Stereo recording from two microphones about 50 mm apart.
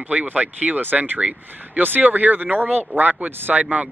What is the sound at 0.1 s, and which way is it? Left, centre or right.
Speech, right.